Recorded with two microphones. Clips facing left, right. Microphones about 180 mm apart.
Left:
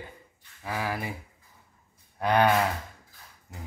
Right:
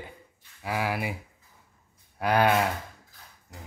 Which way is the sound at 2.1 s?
5° right (ahead or behind).